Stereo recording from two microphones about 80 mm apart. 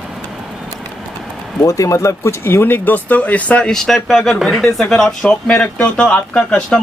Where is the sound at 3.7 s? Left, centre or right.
Centre.